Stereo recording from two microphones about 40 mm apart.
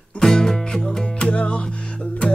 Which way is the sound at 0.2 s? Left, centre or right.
Centre.